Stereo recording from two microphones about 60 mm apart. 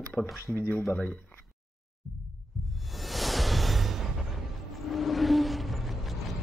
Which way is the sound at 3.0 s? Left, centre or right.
Centre.